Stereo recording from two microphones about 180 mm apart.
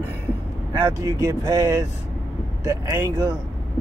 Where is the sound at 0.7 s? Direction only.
20° right (ahead or behind).